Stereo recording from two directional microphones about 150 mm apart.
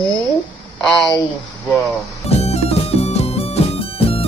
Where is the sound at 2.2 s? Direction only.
45° left (ahead or behind).